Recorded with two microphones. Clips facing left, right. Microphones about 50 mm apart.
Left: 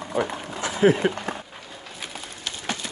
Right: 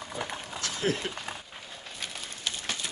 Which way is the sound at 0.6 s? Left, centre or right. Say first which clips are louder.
Left 12 dB; centre.